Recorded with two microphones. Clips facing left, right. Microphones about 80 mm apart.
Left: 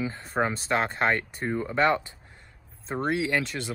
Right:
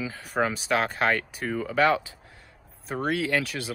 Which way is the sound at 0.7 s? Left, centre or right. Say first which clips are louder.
Right 1 dB; left.